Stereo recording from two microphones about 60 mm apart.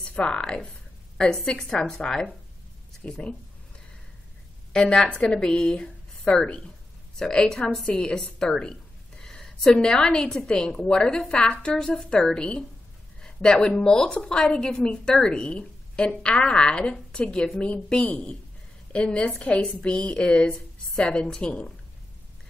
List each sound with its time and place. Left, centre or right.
0.0 s a woman's voice: centre
4.7 s a woman's voice: centre